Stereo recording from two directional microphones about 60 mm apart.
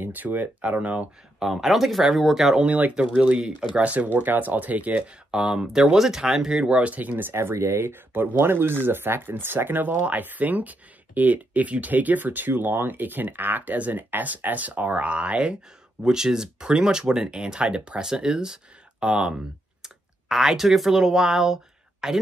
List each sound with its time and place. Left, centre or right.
0.0 s speech: right
1.4 s speech: centre
2.6 s speech: right
3.8 s speech: right; by 6.7 s centre
6.7 s speech: right
7.3 s speech: right; by 22.2 s centre